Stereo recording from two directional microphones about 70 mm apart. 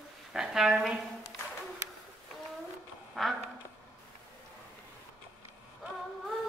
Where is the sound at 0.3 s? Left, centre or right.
Centre.